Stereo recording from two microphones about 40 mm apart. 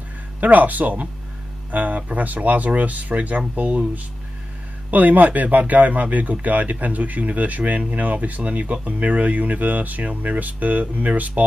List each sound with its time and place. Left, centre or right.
0.4 s speech: right